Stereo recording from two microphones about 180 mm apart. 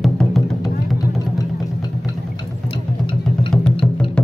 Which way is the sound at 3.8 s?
Centre (ahead or behind).